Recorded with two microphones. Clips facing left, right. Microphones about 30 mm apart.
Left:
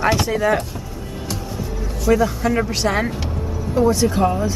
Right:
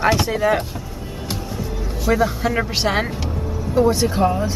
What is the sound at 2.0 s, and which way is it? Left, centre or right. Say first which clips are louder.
Speech: left 2 dB; centre.